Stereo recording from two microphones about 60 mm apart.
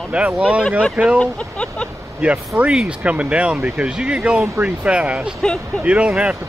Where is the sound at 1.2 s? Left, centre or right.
Centre.